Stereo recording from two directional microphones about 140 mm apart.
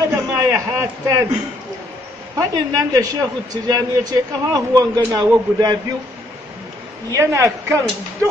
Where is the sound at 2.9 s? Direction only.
25° right (ahead or behind).